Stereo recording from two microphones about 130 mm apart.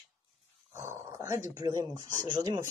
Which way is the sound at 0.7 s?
20° right (ahead or behind).